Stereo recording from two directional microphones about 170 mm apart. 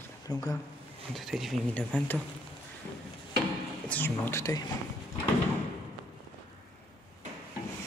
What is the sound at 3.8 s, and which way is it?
Speech, 10° left (ahead or behind).